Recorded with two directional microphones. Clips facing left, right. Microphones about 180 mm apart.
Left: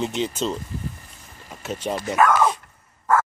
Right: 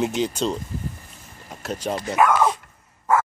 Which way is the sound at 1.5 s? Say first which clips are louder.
Right 1 dB; 5° left (ahead or behind).